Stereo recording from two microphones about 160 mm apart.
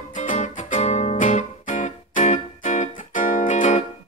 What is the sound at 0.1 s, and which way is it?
Music, 50° left (ahead or behind).